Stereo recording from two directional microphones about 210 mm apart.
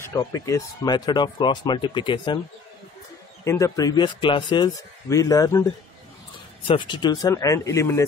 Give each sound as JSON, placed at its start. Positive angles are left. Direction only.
{"t": 0.0, "sound": "speech", "side_deg": 15}
{"t": 3.4, "sound": "speech", "side_deg": 15}
{"t": 6.7, "sound": "speech", "side_deg": 20}